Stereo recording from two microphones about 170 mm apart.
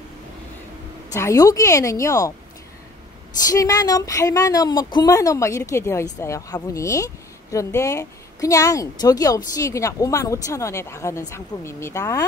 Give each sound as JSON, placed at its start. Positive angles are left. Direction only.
{"t": 1.1, "sound": "a woman's voice", "side_deg": 20}
{"t": 3.4, "sound": "a woman's voice", "side_deg": 20}